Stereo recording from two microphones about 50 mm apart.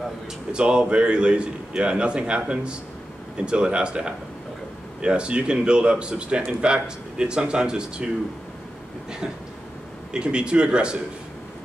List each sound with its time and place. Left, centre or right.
0.5 s speech: right
10.1 s speech: centre